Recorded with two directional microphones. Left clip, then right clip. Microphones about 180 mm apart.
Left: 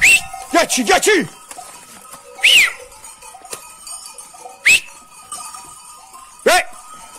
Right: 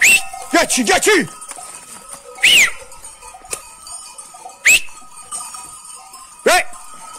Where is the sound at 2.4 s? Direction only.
20° right (ahead or behind).